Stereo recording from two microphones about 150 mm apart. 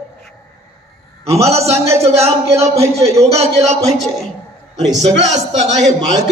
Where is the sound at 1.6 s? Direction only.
20° right (ahead or behind).